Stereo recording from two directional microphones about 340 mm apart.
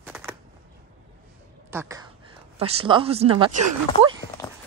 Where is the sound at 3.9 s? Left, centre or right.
Centre.